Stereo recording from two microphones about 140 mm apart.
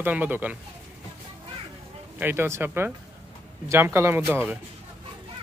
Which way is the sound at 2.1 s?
15° right (ahead or behind).